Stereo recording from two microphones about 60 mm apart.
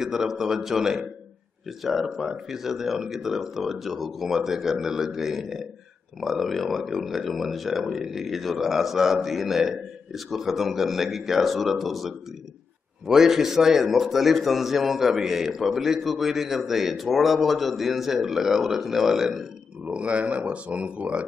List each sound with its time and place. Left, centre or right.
0.0 s a man's voice: centre
19.8 s speech: right